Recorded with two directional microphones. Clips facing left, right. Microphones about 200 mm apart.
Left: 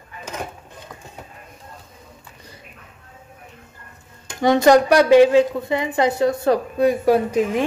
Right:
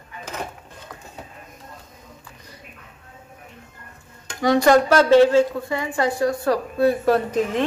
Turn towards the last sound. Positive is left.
turn(degrees=10)  # may be behind; listen again after turning